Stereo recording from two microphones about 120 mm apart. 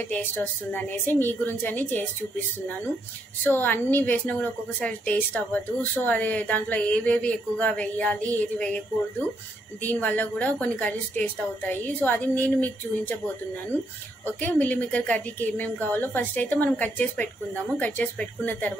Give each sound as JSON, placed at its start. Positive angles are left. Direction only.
{"t": 0.1, "sound": "a woman's voice", "side_deg": 15}
{"t": 3.4, "sound": "a woman's voice", "side_deg": 15}
{"t": 9.8, "sound": "a woman's voice", "side_deg": 10}
{"t": 14.4, "sound": "a woman's voice", "side_deg": 15}